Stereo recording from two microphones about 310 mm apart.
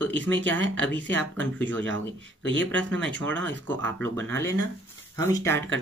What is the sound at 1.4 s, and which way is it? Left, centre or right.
Speech, centre.